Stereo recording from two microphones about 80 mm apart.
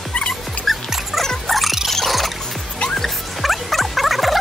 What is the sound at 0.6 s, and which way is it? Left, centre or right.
Music, centre.